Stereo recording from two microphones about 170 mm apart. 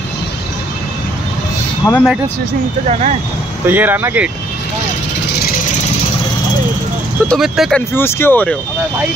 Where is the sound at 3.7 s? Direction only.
10° right (ahead or behind).